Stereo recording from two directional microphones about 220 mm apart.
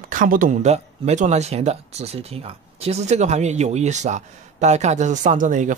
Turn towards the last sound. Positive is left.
turn(degrees=-35)  # may be behind; listen again after turning